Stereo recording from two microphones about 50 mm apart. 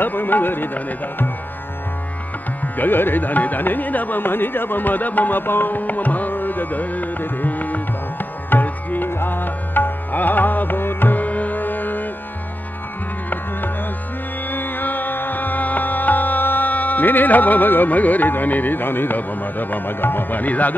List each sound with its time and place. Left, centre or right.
0.0 s music: left
2.6 s music: left
14.5 s music: left